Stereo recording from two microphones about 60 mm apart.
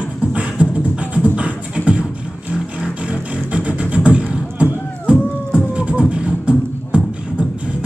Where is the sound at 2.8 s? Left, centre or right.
Centre.